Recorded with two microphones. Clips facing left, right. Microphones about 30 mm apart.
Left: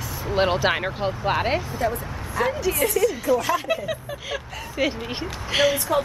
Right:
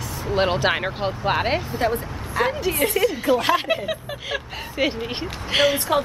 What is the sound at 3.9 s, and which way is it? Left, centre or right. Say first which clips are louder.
Speech: right 2 dB; right.